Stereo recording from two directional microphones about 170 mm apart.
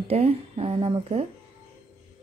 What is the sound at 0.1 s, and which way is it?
Speech, 35° right (ahead or behind).